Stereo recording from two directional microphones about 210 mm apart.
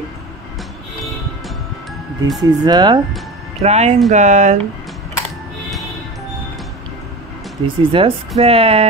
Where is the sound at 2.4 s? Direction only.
20° right (ahead or behind).